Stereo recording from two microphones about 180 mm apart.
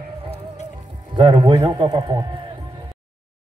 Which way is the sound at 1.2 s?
25° right (ahead or behind).